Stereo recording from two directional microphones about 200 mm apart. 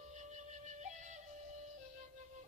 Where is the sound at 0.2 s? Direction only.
35° right (ahead or behind).